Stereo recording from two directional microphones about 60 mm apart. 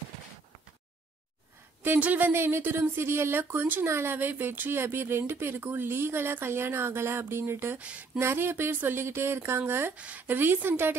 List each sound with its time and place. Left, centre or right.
1.8 s speech: right
3.8 s speech: right
7.8 s speech: right
8.2 s speech: right
9.9 s speech: right
10.2 s speech: right